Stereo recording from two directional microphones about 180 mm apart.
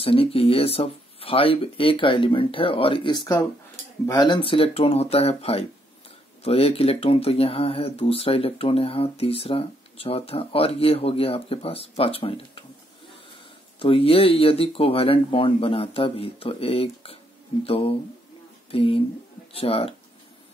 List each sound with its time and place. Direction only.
0.0 s speech: 30° left (ahead or behind)